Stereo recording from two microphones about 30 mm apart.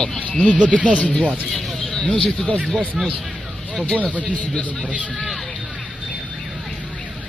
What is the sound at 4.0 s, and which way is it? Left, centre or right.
Speech, left.